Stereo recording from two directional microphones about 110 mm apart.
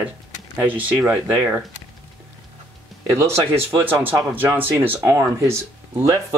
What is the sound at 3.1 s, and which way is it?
Speech, 25° right (ahead or behind).